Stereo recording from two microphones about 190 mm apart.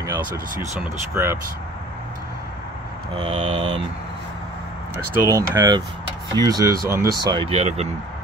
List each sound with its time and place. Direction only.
0.0 s speech: 15° right (ahead or behind)
3.2 s speech: 30° right (ahead or behind)
5.2 s speech: 20° right (ahead or behind); by 7.9 s 35° right (ahead or behind)